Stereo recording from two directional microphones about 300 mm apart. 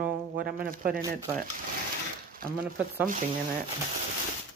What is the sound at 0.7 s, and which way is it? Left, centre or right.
Speech, right.